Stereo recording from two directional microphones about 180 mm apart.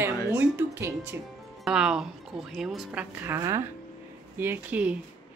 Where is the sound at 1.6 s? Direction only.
5° right (ahead or behind).